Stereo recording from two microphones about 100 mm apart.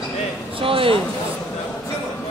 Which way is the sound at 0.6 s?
65° right (ahead or behind).